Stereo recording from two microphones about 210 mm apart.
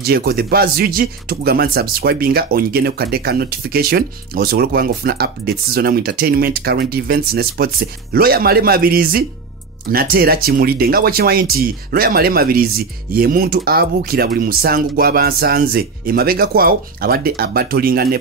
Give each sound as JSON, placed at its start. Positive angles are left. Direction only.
{"t": 0.0, "sound": "speech", "side_deg": -45}